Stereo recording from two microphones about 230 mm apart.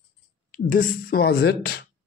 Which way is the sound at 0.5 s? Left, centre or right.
Left.